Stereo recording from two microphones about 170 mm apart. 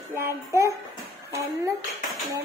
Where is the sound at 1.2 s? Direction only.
20° right (ahead or behind).